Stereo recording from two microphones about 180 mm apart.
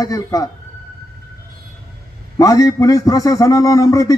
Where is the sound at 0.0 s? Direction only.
20° left (ahead or behind).